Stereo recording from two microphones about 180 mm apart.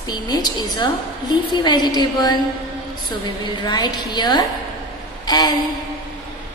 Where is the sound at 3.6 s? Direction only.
25° left (ahead or behind).